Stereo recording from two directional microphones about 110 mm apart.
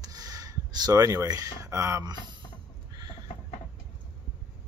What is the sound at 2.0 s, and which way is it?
Speech, 40° right (ahead or behind).